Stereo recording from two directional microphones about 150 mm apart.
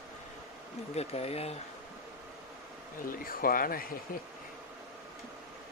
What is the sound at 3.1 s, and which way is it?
Speech, 70° left (ahead or behind).